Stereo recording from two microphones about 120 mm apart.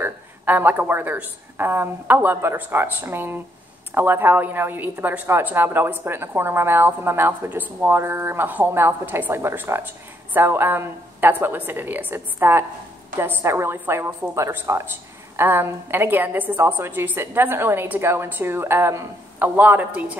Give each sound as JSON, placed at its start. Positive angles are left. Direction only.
{"t": 0.0, "sound": "a woman's voice", "side_deg": -15}